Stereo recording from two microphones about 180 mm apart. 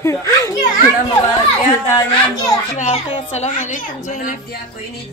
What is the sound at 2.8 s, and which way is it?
A woman's voice, 40° left (ahead or behind).